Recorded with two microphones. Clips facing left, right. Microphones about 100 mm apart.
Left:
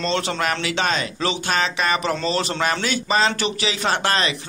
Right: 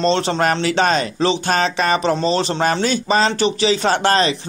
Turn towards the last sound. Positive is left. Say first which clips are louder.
# right 5 dB
turn(degrees=-35)  # may be behind; listen again after turning